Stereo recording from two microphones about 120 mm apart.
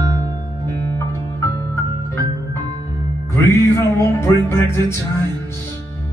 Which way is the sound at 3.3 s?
25° left (ahead or behind).